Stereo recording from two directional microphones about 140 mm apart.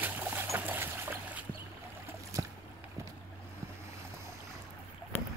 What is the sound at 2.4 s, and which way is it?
Boat, 25° right (ahead or behind).